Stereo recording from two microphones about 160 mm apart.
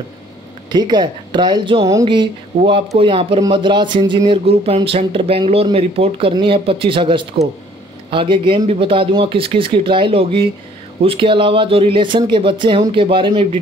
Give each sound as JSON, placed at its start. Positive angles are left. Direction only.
{"t": 0.7, "sound": "speech", "side_deg": -25}